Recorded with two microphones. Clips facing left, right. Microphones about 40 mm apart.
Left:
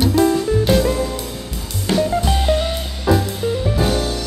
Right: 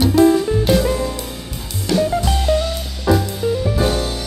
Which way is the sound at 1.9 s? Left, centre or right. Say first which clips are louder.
Even; left.